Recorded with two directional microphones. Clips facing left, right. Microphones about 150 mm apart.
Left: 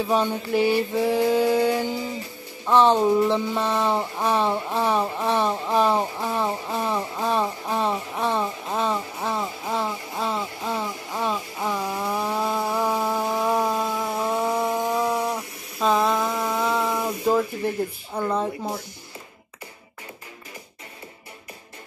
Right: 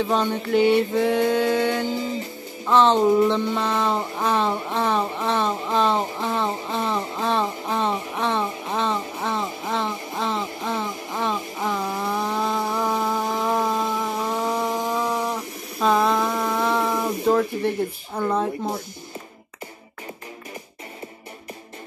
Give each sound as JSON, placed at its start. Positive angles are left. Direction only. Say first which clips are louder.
{"t": 0.0, "sound": "speech", "louder": "even", "side_deg": 10}
{"t": 12.0, "sound": "chainsaw", "louder": "even", "side_deg": 5}
{"t": 14.2, "sound": "chainsaw", "louder": "left 3 dB", "side_deg": 15}
{"t": 15.8, "sound": "a sound", "louder": "right 1 dB", "side_deg": 0}